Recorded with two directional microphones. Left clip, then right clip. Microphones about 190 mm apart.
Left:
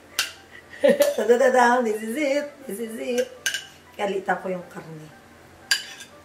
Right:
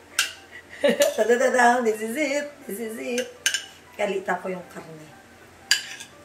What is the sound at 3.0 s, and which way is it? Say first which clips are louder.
Dishes: left 2 dB; centre (ahead or behind).